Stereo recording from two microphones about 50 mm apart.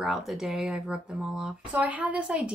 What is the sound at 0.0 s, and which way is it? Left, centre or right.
Speech, centre.